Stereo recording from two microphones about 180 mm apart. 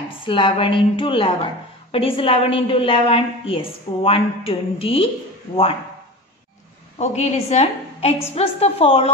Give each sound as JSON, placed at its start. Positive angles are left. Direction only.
{"t": 0.2, "sound": "a woman's voice", "side_deg": 30}
{"t": 7.0, "sound": "a woman's voice", "side_deg": 40}